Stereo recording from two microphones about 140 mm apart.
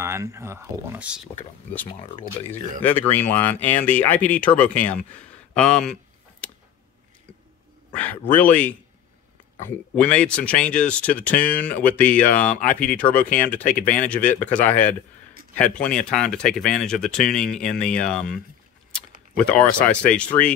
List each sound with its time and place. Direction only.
0.0 s speech: 20° right (ahead or behind)
1.9 s speech: 40° left (ahead or behind)
2.8 s speech: 15° left (ahead or behind)
7.9 s speech: 10° left (ahead or behind)
19.3 s speech: 5° left (ahead or behind)